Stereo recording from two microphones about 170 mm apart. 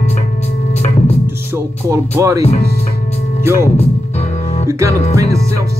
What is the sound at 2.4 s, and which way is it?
Speech, 40° left (ahead or behind).